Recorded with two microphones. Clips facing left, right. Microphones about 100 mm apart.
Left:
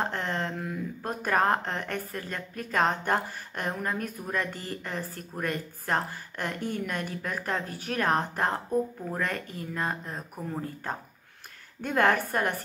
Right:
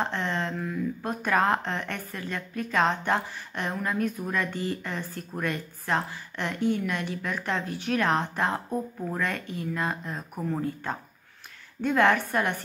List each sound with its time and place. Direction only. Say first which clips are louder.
0.0 s a woman's voice: right 1 dB; 45° left (ahead or behind)
11.8 s a woman's voice: right 2 dB; 45° left (ahead or behind)